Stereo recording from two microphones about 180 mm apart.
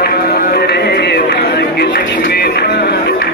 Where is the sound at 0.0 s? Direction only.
60° left (ahead or behind).